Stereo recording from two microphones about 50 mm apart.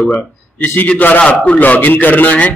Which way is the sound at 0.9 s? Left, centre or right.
Left.